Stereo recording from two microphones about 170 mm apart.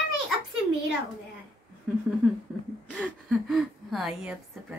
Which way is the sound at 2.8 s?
5° left (ahead or behind).